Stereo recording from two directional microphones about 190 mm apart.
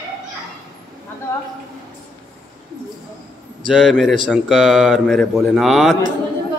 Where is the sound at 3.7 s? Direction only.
Centre (ahead or behind).